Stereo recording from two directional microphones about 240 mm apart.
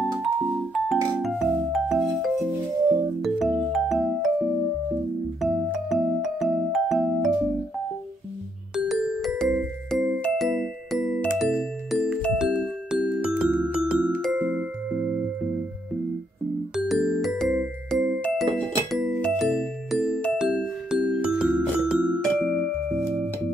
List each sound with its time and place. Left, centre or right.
0.7 s music: centre
8.7 s music: centre
16.7 s music: centre